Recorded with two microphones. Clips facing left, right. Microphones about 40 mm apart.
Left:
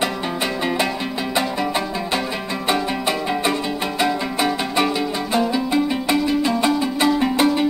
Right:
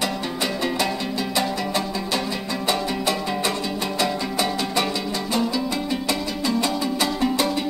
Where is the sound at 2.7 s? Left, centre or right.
Centre.